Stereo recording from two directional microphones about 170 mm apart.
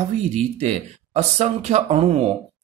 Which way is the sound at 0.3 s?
40° right (ahead or behind).